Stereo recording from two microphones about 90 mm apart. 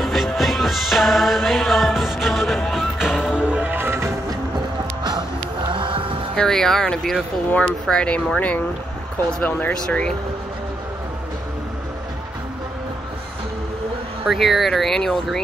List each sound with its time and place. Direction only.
0.0 s music: centre (ahead or behind); by 4.1 s 25° right (ahead or behind)
5.7 s music: 65° right (ahead or behind)
6.3 s speech: 5° left (ahead or behind)
9.8 s speech: 10° left (ahead or behind)
14.3 s speech: centre (ahead or behind)